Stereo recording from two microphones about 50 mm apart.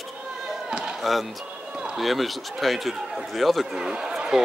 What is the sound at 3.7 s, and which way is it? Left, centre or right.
Speech, centre.